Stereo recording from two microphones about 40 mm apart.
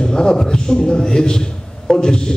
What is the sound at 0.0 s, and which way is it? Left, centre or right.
A man's voice, centre.